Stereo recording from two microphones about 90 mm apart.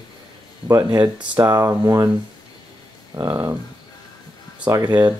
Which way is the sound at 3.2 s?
40° right (ahead or behind).